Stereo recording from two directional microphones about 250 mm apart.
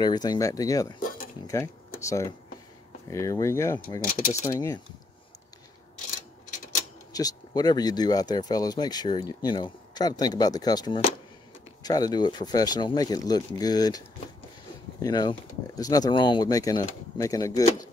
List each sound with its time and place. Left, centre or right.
0.0 s speech: centre
7.1 s speech: centre